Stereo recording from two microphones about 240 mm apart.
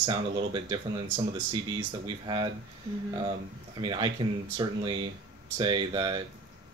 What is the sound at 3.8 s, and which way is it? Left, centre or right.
Speech, centre.